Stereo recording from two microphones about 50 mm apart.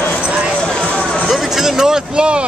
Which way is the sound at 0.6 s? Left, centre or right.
Centre.